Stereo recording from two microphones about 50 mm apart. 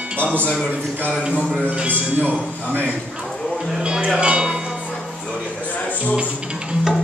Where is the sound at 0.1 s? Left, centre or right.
Right.